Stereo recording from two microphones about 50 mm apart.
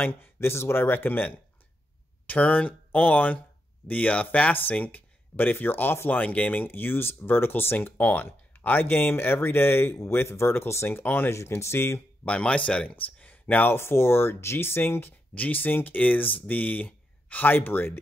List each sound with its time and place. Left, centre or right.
0.0 s speech: left
12.3 s speech: left
12.9 s speech: left
15.3 s speech: left